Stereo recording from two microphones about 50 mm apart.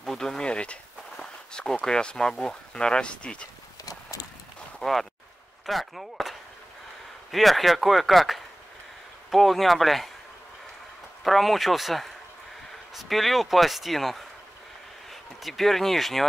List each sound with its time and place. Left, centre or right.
0.0 s a sound: centre
1.1 s speech: centre
4.7 s speech: centre
11.2 s speech: centre
15.4 s speech: centre